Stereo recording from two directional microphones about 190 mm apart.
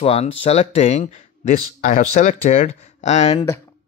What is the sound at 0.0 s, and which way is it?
Speech, 30° left (ahead or behind).